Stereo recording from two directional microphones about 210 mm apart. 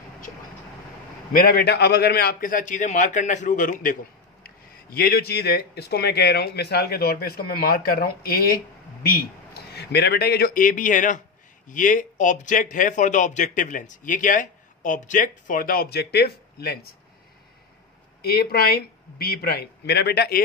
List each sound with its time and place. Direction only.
1.3 s a man's voice: 45° left (ahead or behind)
9.8 s a man's voice: 50° left (ahead or behind)
18.2 s a man's voice: 45° left (ahead or behind)